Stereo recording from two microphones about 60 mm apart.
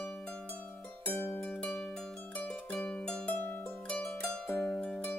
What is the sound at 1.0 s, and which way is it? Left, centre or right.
Music, left.